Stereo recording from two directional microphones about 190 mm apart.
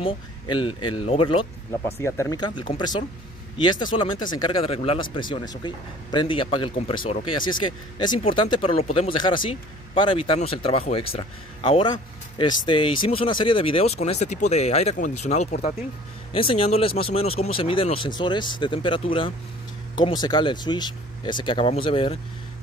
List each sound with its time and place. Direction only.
0.0 s speech: 25° left (ahead or behind)
2.0 s speech: 15° left (ahead or behind)